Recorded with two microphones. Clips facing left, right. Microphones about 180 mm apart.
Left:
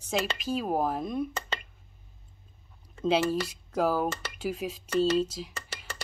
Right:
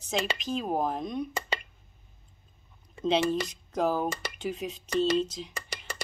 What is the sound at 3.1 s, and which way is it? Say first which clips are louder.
Speech: even; 5° left (ahead or behind).